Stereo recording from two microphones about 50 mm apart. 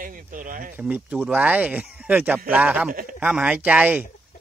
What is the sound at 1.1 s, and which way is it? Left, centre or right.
Speech, right.